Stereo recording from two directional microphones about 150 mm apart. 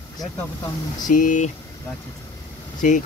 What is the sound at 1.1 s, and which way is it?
Speech, 60° left (ahead or behind).